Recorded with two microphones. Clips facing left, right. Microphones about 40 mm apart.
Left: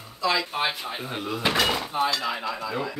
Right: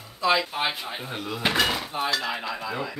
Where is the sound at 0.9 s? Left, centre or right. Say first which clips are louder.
Left 2 dB; centre.